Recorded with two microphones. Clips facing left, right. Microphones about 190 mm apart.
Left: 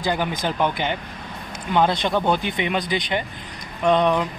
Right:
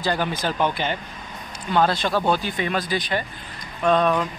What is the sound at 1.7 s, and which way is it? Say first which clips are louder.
Speech: left 1 dB; 20° left (ahead or behind).